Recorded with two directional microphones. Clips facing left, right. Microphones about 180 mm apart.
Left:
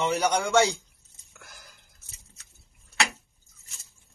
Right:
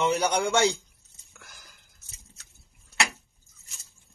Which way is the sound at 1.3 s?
Centre (ahead or behind).